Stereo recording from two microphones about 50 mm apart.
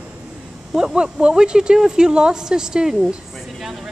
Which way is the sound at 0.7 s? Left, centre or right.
Centre.